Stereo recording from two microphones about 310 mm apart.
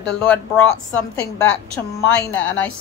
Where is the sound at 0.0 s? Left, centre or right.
Centre.